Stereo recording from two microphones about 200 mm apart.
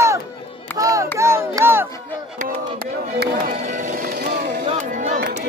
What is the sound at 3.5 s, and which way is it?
Music, 35° right (ahead or behind).